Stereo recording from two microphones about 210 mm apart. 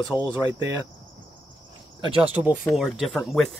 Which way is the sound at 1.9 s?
25° right (ahead or behind).